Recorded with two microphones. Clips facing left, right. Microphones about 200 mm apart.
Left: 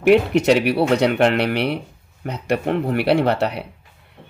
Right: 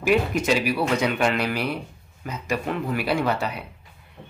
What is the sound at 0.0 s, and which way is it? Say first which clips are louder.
Speech: left 7 dB; 65° left (ahead or behind).